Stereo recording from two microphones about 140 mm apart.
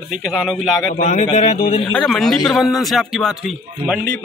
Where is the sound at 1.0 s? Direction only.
55° left (ahead or behind).